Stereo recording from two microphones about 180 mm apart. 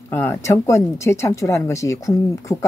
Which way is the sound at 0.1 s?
15° left (ahead or behind).